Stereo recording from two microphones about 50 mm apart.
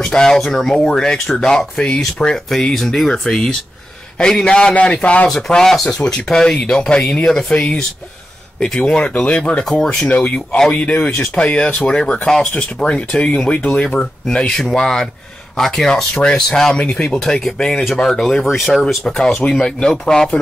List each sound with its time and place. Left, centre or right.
0.0 s speech: centre
2.3 s speech: centre; by 5.3 s left
5.3 s speech: centre
8.7 s speech: centre
13.6 s speech: left
13.8 s speech: centre
16.7 s speech: left; by 18.7 s centre
19.0 s speech: centre